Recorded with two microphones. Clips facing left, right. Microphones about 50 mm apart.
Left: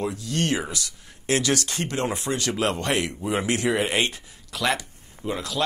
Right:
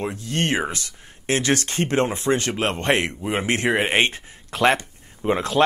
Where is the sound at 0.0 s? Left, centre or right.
Right.